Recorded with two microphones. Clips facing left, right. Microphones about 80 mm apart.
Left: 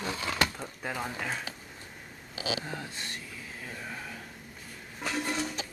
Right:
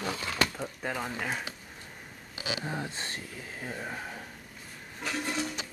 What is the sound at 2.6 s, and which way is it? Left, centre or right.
Speech, right.